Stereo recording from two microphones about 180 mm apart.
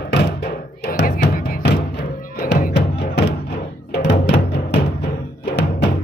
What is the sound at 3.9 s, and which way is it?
Music, 70° left (ahead or behind).